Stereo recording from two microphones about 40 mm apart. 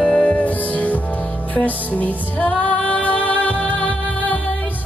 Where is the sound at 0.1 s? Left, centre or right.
Left.